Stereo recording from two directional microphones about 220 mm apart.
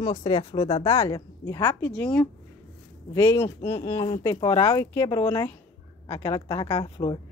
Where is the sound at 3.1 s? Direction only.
20° left (ahead or behind).